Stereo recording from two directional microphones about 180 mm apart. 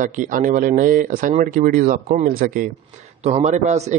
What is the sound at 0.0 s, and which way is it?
Speech, 45° right (ahead or behind).